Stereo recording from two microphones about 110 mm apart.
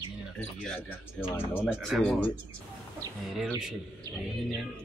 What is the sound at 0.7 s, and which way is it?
A man's voice, 15° left (ahead or behind).